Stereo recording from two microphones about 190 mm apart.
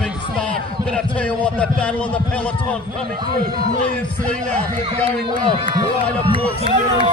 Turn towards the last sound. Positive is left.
turn(degrees=-30)  # may be behind; listen again after turning